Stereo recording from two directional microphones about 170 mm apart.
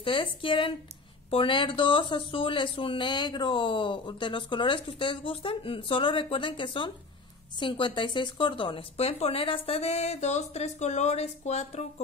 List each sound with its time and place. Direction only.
0.0 s speech: 30° left (ahead or behind)